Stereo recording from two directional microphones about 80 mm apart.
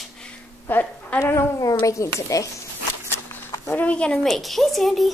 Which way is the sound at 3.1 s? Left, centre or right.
Left.